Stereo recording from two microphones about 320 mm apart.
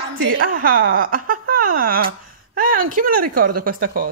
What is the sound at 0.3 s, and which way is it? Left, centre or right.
Speech, right.